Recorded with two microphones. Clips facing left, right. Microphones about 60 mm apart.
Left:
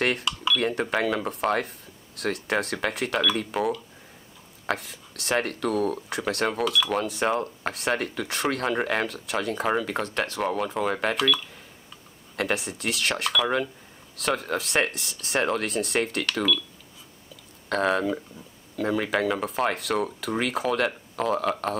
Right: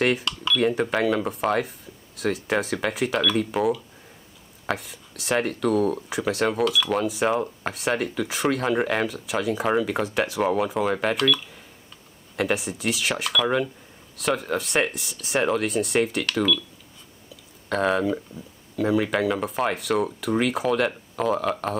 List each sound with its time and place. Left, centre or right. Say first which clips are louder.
0.0 s speech: right 2 dB; centre
17.6 s speech: right 1 dB; centre